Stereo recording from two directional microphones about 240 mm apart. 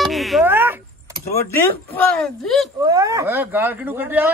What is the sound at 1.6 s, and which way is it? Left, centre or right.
A man's voice, centre.